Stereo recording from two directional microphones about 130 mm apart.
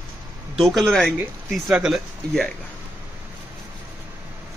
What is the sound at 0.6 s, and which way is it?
Speech, centre (ahead or behind).